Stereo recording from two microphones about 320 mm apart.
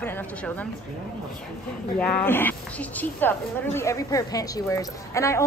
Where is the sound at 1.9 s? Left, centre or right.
Centre.